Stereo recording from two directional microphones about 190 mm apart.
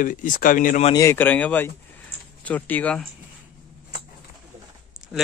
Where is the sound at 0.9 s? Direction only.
10° left (ahead or behind).